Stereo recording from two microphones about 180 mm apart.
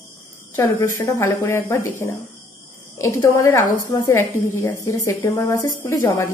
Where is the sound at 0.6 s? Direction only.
15° left (ahead or behind).